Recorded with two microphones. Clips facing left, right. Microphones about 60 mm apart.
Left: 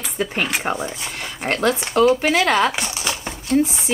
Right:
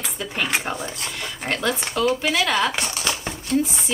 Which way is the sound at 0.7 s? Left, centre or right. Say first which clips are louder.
Left 5 dB; left.